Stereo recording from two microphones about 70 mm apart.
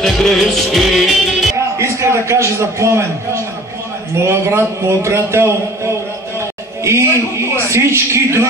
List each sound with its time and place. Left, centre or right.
0.0 s music: centre
1.8 s a man's voice: right
4.2 s a man's voice: right